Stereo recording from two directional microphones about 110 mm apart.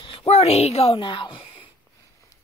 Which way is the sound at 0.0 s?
55° left (ahead or behind).